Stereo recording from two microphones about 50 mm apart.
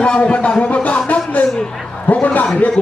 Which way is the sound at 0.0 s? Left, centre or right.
Left.